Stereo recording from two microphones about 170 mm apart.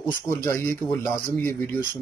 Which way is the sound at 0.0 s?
15° left (ahead or behind).